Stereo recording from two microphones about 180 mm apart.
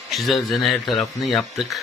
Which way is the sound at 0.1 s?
Centre (ahead or behind).